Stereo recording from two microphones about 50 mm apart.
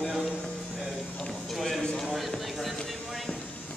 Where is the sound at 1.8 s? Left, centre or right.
Centre.